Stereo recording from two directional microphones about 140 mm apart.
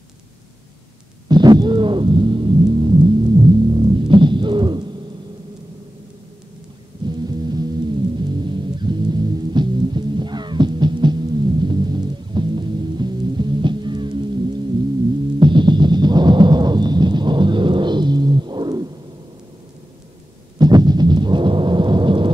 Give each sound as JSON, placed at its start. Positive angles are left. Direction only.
{"t": 1.3, "sound": "music", "side_deg": -30}
{"t": 7.1, "sound": "music", "side_deg": -30}
{"t": 15.3, "sound": "music", "side_deg": -35}
{"t": 20.5, "sound": "a sound", "side_deg": -30}